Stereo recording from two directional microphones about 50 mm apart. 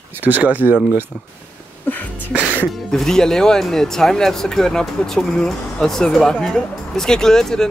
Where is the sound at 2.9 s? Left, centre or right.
Centre.